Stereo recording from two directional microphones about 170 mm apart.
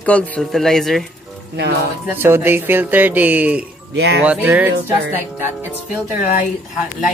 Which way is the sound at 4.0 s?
80° right.